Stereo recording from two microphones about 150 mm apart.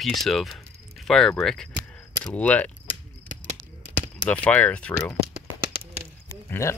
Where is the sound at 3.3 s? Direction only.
55° right (ahead or behind).